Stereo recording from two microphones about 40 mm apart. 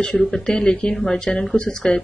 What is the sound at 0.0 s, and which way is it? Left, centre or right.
Speech, left.